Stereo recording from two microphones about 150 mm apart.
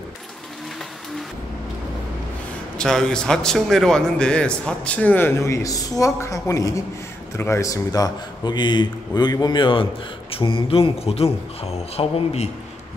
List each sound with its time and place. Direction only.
2.8 s a man's voice: 5° left (ahead or behind); by 12.4 s 45° left (ahead or behind)